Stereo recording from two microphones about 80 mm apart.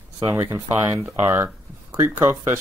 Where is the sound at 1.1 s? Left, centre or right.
Right.